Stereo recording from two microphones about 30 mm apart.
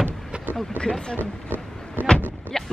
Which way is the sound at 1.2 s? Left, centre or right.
Left.